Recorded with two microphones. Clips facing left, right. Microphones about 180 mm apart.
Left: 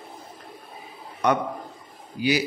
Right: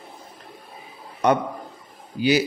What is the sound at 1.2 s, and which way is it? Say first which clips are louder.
Speech: right 3 dB; 30° right (ahead or behind).